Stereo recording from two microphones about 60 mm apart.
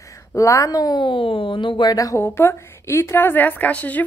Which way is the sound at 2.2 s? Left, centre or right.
Left.